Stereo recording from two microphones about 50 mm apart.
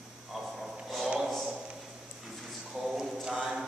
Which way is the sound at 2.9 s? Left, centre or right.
Centre.